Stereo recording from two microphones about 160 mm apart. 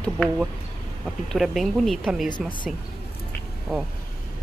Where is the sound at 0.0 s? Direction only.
5° left (ahead or behind).